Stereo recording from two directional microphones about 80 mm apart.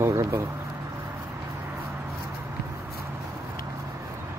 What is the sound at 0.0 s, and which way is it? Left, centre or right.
Speech, right.